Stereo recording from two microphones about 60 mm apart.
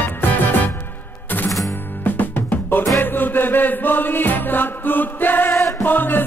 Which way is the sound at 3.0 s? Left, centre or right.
Left.